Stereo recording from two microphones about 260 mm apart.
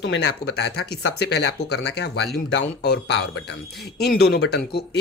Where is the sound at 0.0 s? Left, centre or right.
Left.